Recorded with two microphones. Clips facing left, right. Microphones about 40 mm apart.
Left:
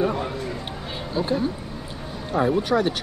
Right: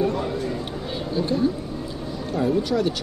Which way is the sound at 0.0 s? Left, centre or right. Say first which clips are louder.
Even; centre.